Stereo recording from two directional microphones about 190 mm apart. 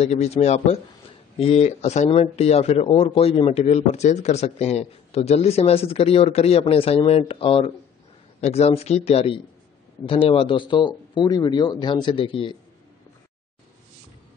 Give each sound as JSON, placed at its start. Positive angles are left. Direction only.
{"t": 0.0, "sound": "speech", "side_deg": 35}